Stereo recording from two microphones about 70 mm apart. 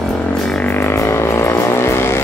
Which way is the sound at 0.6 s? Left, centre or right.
Left.